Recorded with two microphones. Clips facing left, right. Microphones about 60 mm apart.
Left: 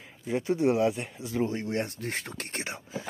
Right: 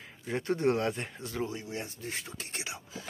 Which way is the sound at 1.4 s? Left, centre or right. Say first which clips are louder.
Left 7 dB; left.